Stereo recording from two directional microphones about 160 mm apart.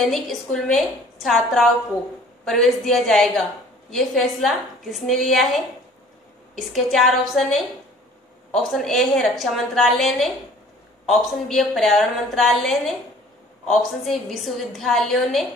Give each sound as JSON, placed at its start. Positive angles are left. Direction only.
{"t": 0.0, "sound": "a woman's voice", "side_deg": 0}